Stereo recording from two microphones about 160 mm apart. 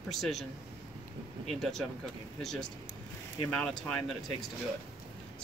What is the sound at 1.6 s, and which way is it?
Speech, centre (ahead or behind).